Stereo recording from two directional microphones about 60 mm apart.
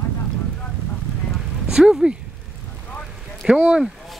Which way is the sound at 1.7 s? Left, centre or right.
Centre.